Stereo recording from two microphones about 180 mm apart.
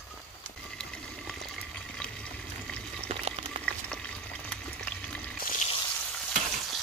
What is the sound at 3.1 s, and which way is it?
Frying, 35° right (ahead or behind).